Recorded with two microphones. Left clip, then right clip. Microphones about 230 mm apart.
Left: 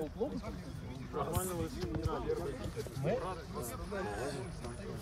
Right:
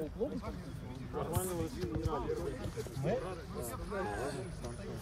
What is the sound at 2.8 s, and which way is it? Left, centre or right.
Speech, right.